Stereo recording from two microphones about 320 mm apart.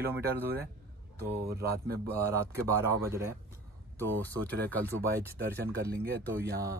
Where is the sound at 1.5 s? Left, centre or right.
Right.